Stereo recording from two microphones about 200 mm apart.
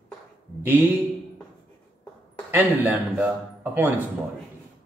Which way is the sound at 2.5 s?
10° right (ahead or behind).